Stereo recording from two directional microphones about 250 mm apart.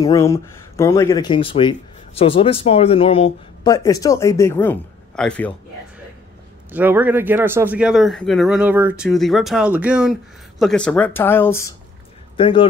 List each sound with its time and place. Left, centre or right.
0.0 s speech: centre
6.7 s speech: centre
12.4 s speech: left